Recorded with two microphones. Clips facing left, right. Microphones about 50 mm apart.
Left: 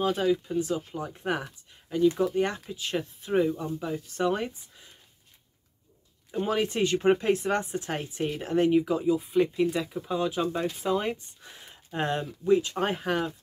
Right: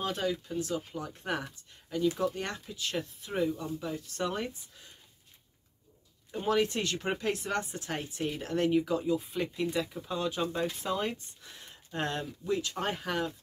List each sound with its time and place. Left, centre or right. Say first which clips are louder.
0.0 s speech: left 7 dB; centre
6.4 s speech: left 2 dB; centre